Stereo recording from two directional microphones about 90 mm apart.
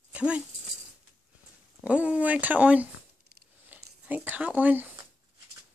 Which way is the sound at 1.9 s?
15° right (ahead or behind).